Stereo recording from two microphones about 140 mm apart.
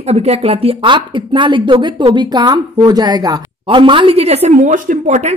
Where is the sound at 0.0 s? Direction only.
45° right (ahead or behind).